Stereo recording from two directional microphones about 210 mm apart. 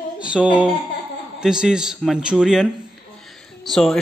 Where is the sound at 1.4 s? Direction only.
5° right (ahead or behind).